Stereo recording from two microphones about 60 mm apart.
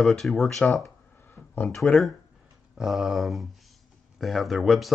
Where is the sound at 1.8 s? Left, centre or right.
Centre.